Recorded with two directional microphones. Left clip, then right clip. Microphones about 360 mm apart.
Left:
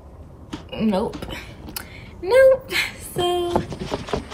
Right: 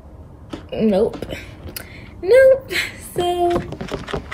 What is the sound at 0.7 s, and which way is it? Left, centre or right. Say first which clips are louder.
A woman's voice: right 6 dB; centre.